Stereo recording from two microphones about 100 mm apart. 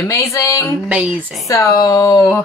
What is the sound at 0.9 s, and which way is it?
Speech, 10° right (ahead or behind).